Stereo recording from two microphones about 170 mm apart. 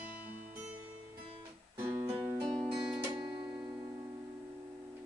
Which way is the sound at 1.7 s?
30° right (ahead or behind).